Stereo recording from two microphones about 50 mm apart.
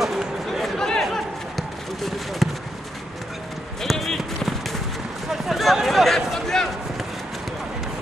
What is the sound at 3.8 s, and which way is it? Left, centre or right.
Run, centre.